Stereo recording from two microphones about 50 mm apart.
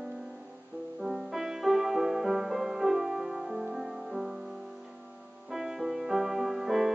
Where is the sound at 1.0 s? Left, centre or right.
Centre.